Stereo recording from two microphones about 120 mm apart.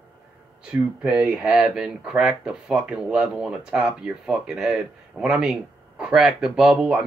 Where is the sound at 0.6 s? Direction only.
10° right (ahead or behind).